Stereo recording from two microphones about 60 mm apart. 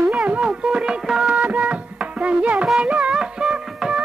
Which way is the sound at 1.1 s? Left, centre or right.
Centre.